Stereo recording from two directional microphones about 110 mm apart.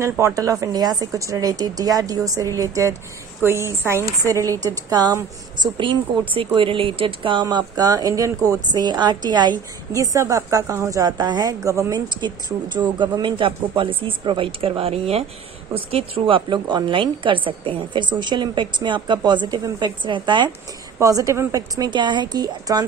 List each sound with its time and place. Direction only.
0.2 s a woman's voice: 30° right (ahead or behind)
5.6 s a woman's voice: 50° right (ahead or behind)
7.4 s a woman's voice: 35° right (ahead or behind)
9.9 s a woman's voice: 30° right (ahead or behind)
12.1 s a woman's voice: 40° right (ahead or behind)
21.0 s a woman's voice: 30° right (ahead or behind)